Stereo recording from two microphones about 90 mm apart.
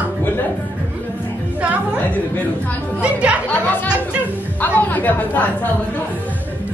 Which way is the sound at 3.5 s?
20° left (ahead or behind).